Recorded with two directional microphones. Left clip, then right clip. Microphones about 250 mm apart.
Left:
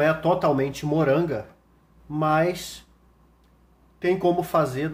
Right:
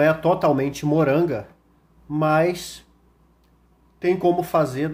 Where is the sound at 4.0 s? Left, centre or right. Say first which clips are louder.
Right 2 dB; centre.